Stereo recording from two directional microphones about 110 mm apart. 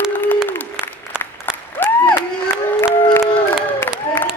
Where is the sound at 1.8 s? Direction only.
20° left (ahead or behind).